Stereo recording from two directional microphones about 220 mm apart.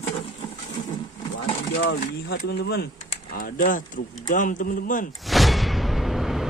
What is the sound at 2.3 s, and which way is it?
A man's voice, 45° left (ahead or behind).